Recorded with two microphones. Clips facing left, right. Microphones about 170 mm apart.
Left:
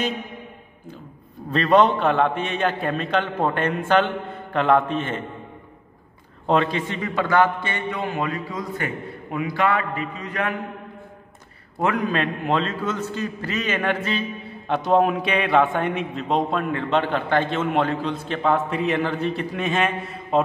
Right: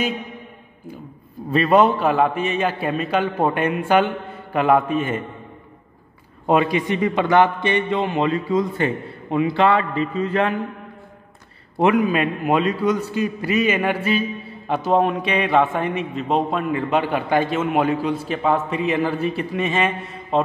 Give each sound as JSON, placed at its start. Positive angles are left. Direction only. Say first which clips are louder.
{"t": 1.5, "sound": "a man's voice", "louder": "right 1 dB", "side_deg": -10}
{"t": 6.4, "sound": "a man's voice", "louder": "right 3 dB", "side_deg": -10}
{"t": 11.8, "sound": "a man's voice", "louder": "right 5 dB", "side_deg": -10}